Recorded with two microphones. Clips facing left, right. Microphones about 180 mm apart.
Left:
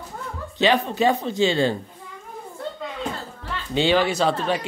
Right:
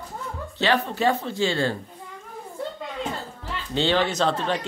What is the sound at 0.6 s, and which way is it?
Speech, 15° left (ahead or behind).